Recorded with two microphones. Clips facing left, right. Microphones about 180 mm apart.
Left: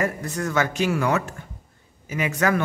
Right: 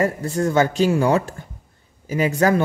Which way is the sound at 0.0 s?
30° right (ahead or behind).